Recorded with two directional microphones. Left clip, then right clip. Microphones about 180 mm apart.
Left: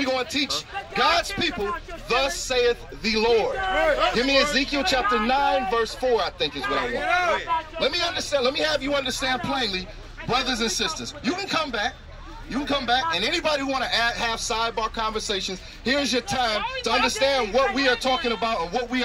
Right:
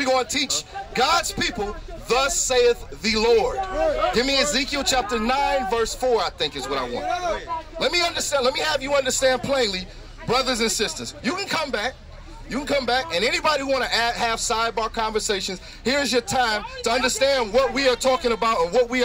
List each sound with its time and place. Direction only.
0.0 s speech: 40° right (ahead or behind)
3.7 s a man's voice: 35° left (ahead or behind)
4.1 s speech: 40° right (ahead or behind)